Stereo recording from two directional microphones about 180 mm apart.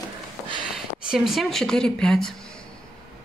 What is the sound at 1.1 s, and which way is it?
Speech, centre (ahead or behind).